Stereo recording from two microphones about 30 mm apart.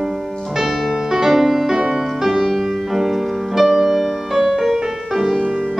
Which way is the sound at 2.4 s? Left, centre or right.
Centre.